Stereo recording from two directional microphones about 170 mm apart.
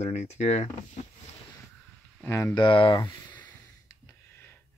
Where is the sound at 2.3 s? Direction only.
20° left (ahead or behind).